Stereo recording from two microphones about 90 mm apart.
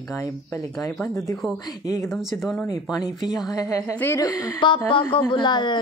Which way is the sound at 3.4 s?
40° left (ahead or behind).